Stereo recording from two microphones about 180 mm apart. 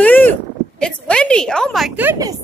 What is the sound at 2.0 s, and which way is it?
Speech, 15° right (ahead or behind).